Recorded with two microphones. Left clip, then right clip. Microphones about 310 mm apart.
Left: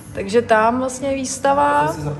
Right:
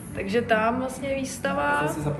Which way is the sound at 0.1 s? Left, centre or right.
Centre.